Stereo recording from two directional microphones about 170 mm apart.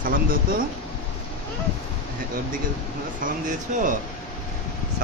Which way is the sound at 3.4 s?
50° right (ahead or behind).